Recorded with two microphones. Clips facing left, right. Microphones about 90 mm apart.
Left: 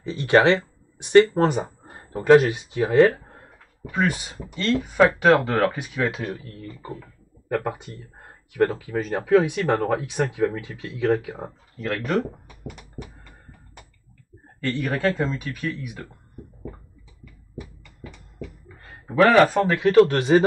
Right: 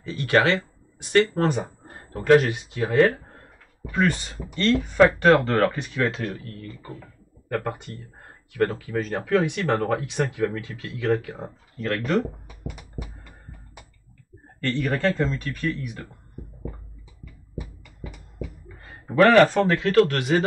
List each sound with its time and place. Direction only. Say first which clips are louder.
0.0 s speech: left 3 dB; 25° left (ahead or behind)
3.8 s speech: right 1 dB; 10° left (ahead or behind)
14.6 s speech: even; 5° left (ahead or behind)
17.2 s a sound: right 1 dB; 5° right (ahead or behind)
18.8 s speech: even; centre (ahead or behind); by 20.4 s 25° left (ahead or behind)